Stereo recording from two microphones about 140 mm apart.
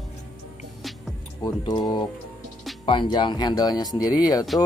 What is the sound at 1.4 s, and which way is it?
Speech, 30° left (ahead or behind).